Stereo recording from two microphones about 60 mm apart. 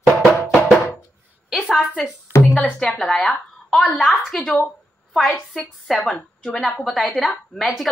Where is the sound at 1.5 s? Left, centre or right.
Centre.